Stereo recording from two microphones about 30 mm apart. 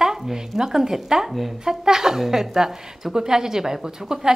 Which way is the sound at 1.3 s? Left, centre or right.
Centre.